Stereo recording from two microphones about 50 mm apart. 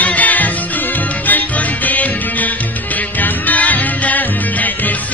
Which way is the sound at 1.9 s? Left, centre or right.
Left.